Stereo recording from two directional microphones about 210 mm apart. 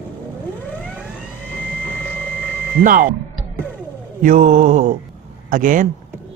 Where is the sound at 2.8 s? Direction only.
40° right (ahead or behind).